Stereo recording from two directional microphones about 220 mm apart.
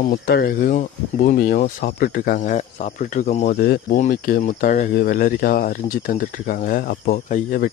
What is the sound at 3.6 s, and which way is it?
Speech, 45° left (ahead or behind).